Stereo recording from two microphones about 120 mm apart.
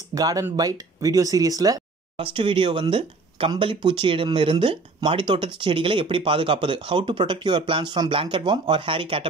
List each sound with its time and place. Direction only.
0.1 s speech: 30° right (ahead or behind)
2.1 s speech: 50° right (ahead or behind)